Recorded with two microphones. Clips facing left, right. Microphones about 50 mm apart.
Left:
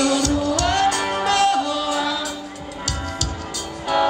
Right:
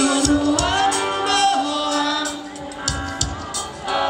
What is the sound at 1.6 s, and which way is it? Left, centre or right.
Music, centre.